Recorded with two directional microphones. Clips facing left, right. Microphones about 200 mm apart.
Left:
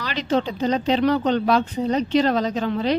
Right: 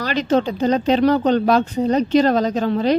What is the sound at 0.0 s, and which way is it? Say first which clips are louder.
A woman's voice: right 4 dB; 45° right (ahead or behind).